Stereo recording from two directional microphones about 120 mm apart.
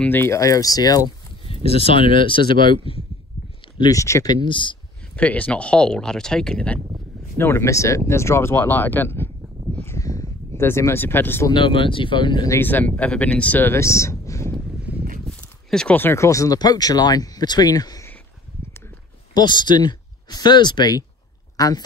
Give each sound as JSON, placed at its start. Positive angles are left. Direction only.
{"t": 0.0, "sound": "speech", "side_deg": 15}
{"t": 1.4, "sound": "speech", "side_deg": 55}
{"t": 3.8, "sound": "speech", "side_deg": 25}
{"t": 5.1, "sound": "speech", "side_deg": 10}
{"t": 7.3, "sound": "speech", "side_deg": 20}
{"t": 9.8, "sound": "a sound", "side_deg": 25}
{"t": 10.6, "sound": "speech", "side_deg": 20}
{"t": 11.5, "sound": "speech", "side_deg": 45}
{"t": 12.4, "sound": "speech", "side_deg": 15}
{"t": 14.9, "sound": "a sound", "side_deg": -10}
{"t": 15.2, "sound": "a sound", "side_deg": 5}
{"t": 16.0, "sound": "speech", "side_deg": 20}
{"t": 19.3, "sound": "speech", "side_deg": 40}